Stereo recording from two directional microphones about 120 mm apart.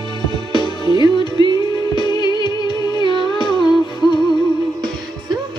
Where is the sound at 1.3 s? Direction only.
35° right (ahead or behind).